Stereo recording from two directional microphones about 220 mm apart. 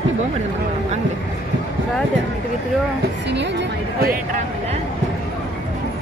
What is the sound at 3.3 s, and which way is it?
Speech, 50° right (ahead or behind).